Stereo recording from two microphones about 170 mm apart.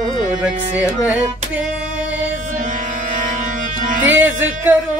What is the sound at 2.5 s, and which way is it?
Music, 50° right (ahead or behind).